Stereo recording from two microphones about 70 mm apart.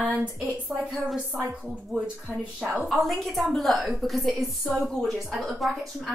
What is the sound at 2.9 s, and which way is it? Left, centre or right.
A woman's voice, centre.